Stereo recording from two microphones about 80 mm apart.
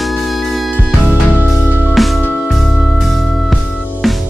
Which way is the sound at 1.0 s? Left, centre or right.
Right.